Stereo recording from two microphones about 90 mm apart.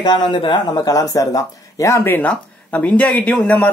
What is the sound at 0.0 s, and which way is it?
Speech, 55° left (ahead or behind).